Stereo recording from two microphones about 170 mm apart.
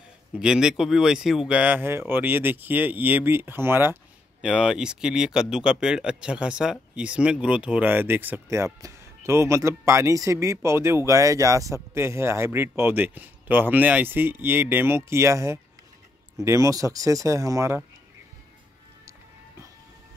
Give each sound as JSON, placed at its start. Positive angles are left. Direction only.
{"t": 0.4, "sound": "speech", "side_deg": -5}